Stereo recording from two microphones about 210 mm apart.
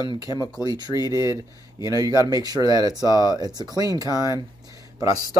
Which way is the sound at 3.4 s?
20° right (ahead or behind).